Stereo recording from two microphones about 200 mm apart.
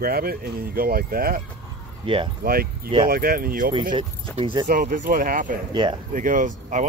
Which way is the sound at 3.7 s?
25° right (ahead or behind).